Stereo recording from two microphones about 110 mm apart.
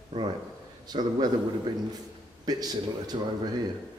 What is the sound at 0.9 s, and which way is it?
Speech, 40° right (ahead or behind).